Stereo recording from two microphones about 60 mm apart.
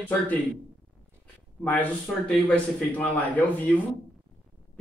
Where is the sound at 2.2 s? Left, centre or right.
Left.